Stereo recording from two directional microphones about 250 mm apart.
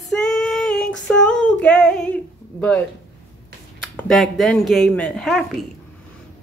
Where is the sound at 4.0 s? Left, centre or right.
Centre.